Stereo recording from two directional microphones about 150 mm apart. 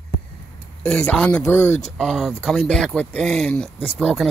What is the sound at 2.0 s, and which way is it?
Speech, centre (ahead or behind).